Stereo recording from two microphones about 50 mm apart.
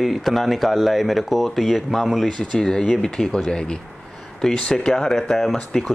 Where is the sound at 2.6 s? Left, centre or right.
Centre.